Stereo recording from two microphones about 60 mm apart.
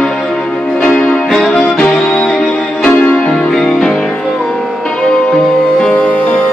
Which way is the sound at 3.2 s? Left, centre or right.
Centre.